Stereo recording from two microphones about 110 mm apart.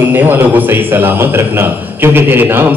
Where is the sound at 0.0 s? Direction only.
15° right (ahead or behind).